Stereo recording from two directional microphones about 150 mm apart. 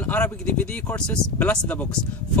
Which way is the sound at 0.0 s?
10° left (ahead or behind).